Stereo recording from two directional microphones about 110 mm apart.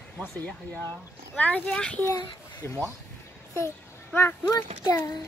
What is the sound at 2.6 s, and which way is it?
Speech, 25° left (ahead or behind).